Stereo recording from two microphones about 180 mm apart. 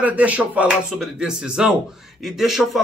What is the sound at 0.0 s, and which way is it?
Speech, 10° right (ahead or behind).